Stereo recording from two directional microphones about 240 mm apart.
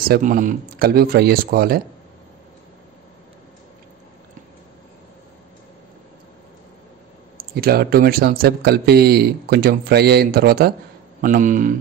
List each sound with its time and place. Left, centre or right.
0.1 s speech: right
7.5 s speech: right